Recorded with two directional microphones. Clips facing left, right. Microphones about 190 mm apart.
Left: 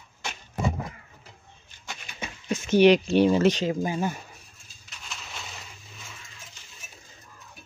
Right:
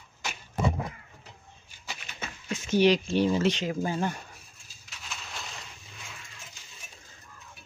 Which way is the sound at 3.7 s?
15° left (ahead or behind).